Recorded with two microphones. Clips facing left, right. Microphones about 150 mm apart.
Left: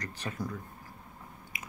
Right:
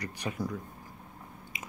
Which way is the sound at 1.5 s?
20° right (ahead or behind).